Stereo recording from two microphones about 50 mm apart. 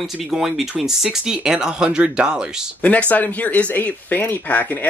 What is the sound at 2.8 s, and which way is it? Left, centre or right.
Speech, left.